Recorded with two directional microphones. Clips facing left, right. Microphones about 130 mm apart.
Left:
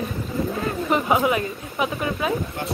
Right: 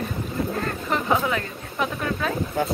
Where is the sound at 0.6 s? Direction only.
10° left (ahead or behind).